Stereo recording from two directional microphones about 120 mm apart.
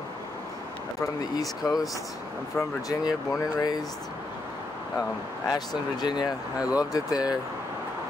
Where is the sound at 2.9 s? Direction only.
35° left (ahead or behind).